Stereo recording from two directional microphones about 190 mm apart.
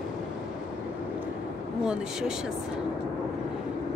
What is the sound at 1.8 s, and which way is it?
Speech, 5° right (ahead or behind).